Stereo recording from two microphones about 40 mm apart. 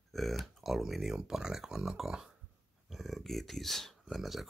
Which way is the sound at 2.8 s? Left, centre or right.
Centre.